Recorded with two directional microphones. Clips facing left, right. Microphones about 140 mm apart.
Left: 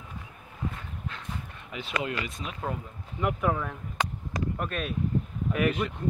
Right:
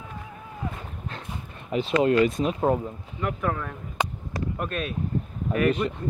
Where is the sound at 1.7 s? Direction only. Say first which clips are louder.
Right 11 dB; 35° right (ahead or behind).